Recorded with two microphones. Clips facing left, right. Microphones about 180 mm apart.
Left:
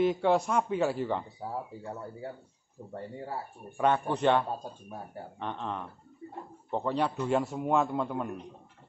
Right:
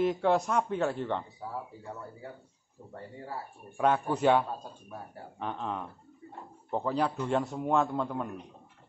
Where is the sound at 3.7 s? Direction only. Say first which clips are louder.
Even; 5° right (ahead or behind).